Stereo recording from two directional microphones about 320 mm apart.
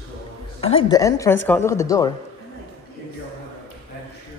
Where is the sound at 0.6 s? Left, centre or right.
Centre.